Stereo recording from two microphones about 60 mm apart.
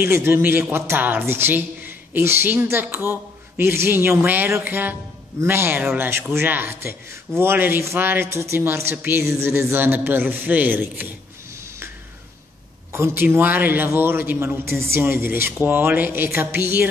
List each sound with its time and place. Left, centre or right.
0.0 s a woman's voice: right
7.8 s a woman's voice: right
9.4 s a woman's voice: right
12.9 s a woman's voice: right
14.6 s a woman's voice: right